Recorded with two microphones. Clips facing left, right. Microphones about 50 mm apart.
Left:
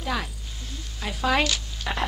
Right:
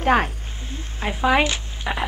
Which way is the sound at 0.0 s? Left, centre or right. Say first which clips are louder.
Right 11 dB; right.